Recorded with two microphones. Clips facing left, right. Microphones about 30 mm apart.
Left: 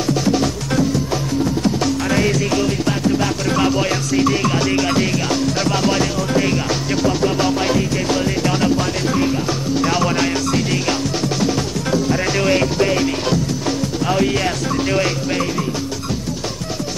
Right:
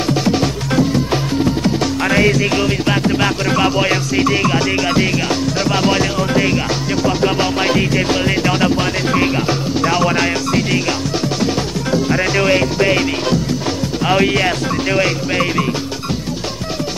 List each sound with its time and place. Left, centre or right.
0.1 s music: right
2.0 s music: right
3.4 s music: right
9.8 s music: centre
14.0 s music: right
14.3 s music: right